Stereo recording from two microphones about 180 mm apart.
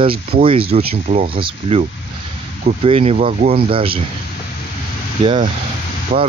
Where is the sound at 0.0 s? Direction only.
30° right (ahead or behind).